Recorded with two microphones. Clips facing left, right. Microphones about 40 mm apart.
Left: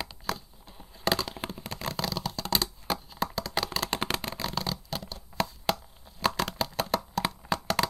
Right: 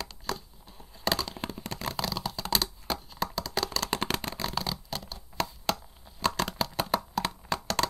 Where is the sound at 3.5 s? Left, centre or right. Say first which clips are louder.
Even; centre.